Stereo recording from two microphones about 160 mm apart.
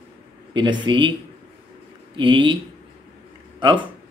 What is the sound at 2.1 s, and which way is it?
Speech, 30° right (ahead or behind).